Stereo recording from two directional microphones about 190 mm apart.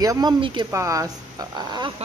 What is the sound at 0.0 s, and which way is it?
Speech, 20° right (ahead or behind).